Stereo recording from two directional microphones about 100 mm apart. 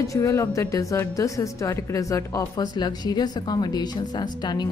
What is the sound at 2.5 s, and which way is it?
A woman's voice, 45° left (ahead or behind).